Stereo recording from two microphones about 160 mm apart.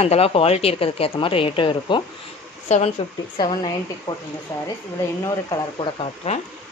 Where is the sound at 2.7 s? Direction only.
45° left (ahead or behind).